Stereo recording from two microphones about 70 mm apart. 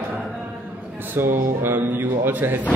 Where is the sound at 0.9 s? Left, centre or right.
Right.